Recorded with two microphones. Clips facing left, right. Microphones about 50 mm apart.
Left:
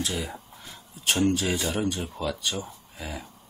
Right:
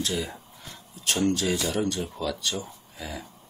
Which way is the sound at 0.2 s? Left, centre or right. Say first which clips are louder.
Right 1 dB; centre.